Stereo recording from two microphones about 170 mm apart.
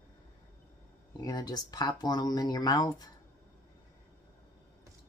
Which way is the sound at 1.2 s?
25° left (ahead or behind).